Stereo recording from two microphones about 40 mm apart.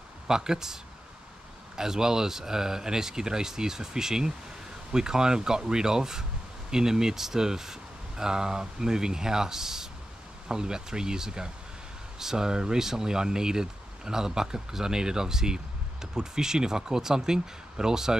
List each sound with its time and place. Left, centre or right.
0.3 s speech: centre
1.8 s speech: centre